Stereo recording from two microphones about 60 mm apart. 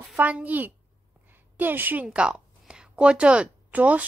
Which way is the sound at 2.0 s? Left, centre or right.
Centre.